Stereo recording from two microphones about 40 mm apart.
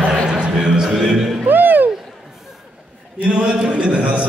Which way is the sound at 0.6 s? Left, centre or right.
Centre.